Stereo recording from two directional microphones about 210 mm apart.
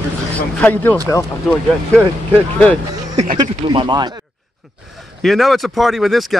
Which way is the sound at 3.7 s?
20° right (ahead or behind).